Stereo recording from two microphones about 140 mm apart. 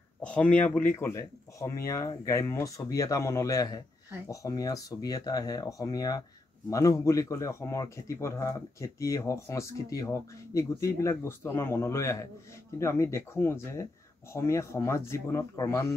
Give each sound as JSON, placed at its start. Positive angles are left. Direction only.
{"t": 0.2, "sound": "speech", "side_deg": 10}